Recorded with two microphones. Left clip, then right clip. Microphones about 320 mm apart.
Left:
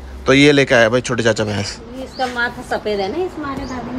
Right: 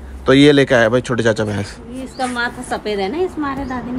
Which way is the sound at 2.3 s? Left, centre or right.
Right.